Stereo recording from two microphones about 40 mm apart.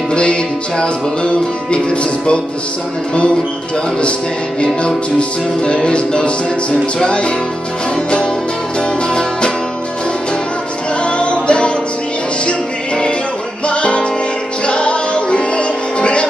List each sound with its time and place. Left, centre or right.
0.1 s music: left
4.6 s music: left
8.7 s music: left
11.1 s music: left